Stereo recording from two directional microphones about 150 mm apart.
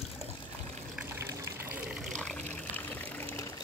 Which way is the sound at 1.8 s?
Centre (ahead or behind).